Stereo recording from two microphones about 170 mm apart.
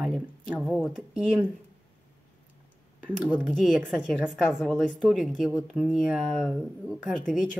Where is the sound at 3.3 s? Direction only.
5° left (ahead or behind).